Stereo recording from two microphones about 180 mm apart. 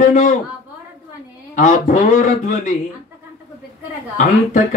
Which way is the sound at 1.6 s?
45° left (ahead or behind).